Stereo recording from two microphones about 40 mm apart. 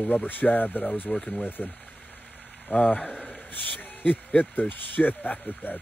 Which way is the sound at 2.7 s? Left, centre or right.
Left.